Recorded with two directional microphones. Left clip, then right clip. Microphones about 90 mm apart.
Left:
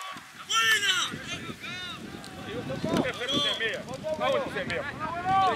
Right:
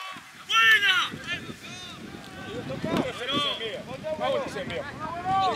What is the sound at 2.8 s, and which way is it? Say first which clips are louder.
Vehicle: even; 10° left (ahead or behind).